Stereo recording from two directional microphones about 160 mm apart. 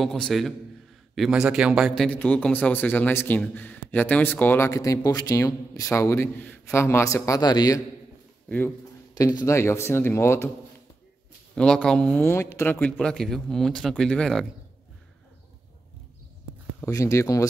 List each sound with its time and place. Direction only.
0.0 s a man's voice: centre (ahead or behind); by 7.8 s 25° left (ahead or behind)
8.5 s speech: 10° left (ahead or behind)
11.5 s a man's voice: 5° left (ahead or behind)
16.8 s speech: 20° left (ahead or behind)